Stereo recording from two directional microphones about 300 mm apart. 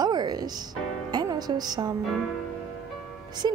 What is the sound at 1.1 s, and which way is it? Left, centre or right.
Music, centre.